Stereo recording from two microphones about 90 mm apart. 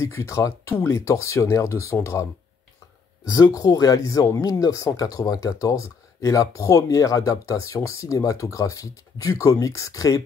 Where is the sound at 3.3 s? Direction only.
45° left (ahead or behind).